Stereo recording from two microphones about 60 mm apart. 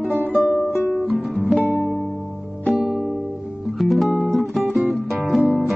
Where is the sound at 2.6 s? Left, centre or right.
Centre.